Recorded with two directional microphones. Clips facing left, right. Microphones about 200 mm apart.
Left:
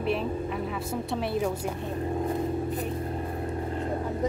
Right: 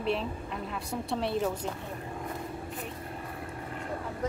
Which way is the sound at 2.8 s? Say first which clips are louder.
Left 8 dB; 35° left (ahead or behind).